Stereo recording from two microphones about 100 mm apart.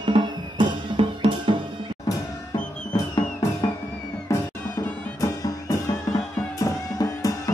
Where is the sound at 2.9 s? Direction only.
40° left (ahead or behind).